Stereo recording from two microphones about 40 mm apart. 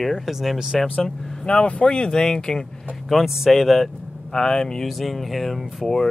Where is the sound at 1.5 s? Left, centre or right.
Left.